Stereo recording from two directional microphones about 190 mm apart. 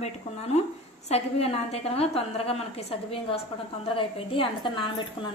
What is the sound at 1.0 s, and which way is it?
A woman's voice, 35° left (ahead or behind).